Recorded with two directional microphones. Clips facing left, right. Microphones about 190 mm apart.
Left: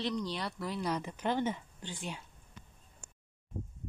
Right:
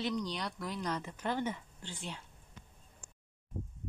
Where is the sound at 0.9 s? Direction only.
15° left (ahead or behind).